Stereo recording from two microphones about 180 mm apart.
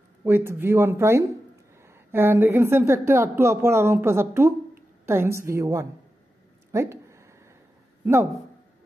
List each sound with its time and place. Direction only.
0.2 s a woman's voice: 15° right (ahead or behind)
6.7 s a sound: 15° right (ahead or behind)
8.0 s a man's voice: 15° right (ahead or behind)